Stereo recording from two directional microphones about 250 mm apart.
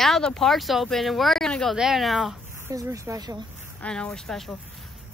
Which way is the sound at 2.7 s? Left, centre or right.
Centre.